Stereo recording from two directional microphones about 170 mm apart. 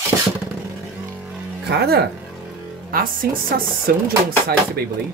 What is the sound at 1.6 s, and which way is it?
Speech, 70° right (ahead or behind).